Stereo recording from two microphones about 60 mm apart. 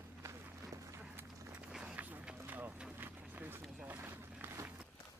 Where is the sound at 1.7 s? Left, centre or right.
Centre.